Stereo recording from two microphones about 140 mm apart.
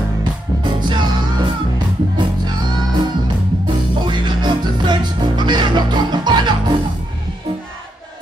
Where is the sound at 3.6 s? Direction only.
35° right (ahead or behind).